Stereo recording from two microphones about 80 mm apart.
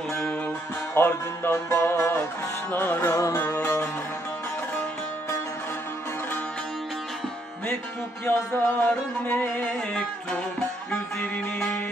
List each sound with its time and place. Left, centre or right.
0.9 s music: left
3.0 s music: left
3.3 s music: left
8.3 s music: left
10.9 s music: left